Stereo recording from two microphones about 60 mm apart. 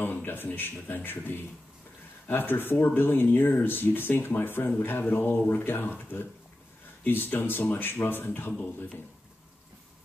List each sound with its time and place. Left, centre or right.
0.0 s a man's voice: left